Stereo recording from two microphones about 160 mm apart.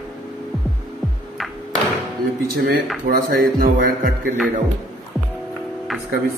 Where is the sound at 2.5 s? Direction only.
75° right (ahead or behind).